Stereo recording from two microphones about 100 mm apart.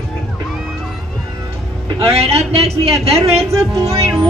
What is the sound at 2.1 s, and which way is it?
A woman's voice, 90° right.